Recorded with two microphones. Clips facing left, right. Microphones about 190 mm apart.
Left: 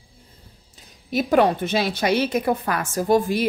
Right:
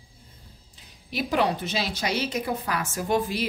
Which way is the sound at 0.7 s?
45° left (ahead or behind).